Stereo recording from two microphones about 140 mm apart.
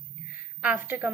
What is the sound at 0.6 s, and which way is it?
Speech, 10° right (ahead or behind).